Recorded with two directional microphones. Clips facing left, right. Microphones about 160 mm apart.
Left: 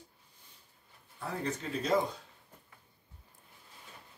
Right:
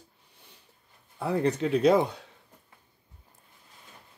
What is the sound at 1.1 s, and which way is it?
Speech, 70° right (ahead or behind).